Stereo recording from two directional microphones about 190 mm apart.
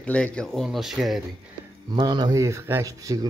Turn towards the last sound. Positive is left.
turn(degrees=-20)  # may be behind; listen again after turning